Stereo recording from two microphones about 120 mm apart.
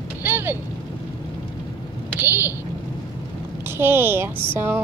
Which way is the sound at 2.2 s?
15° right (ahead or behind).